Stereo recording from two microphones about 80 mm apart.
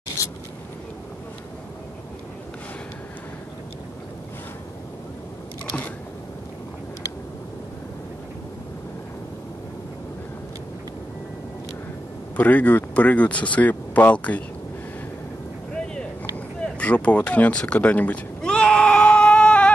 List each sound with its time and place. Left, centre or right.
12.4 s speech: centre
16.5 s speech: centre
18.4 s a sound: centre